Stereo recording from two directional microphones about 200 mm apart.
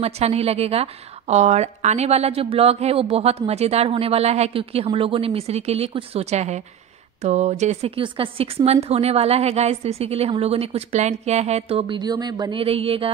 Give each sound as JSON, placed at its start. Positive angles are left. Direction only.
{"t": 0.0, "sound": "a woman's voice", "side_deg": -30}